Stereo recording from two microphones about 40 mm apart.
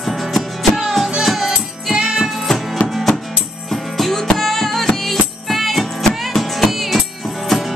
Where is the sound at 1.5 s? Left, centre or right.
Centre.